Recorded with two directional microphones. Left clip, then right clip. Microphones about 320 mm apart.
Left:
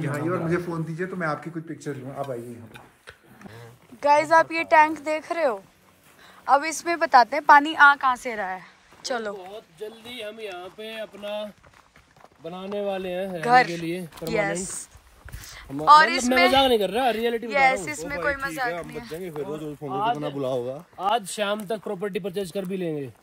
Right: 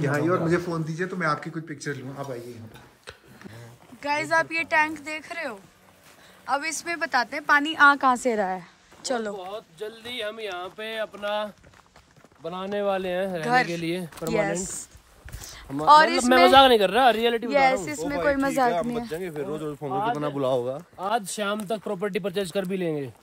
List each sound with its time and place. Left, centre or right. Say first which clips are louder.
0.0 s a man's voice: right 4 dB; centre
0.6 s a woman's voice: right 1 dB; centre
3.1 s a woman's voice: right 2 dB; centre
12.7 s a woman's voice: right 2 dB; centre
15.4 s a sound: even; centre
15.8 s speech: left 1 dB; centre
16.5 s a woman's voice: right 4 dB; centre
17.5 s speech: left 2 dB; centre
19.1 s a woman's voice: right 1 dB; centre
21.0 s a woman's voice: left 3 dB; centre